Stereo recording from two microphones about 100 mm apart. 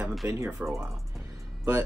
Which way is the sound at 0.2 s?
25° right (ahead or behind).